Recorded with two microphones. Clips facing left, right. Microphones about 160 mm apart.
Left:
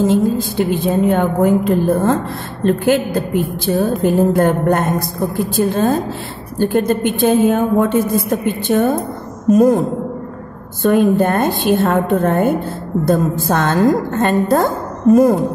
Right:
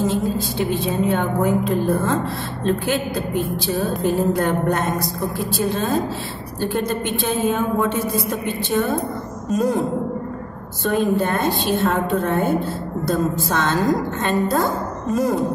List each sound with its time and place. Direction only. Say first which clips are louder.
0.0 s a woman's voice: left 6 dB; 50° left (ahead or behind)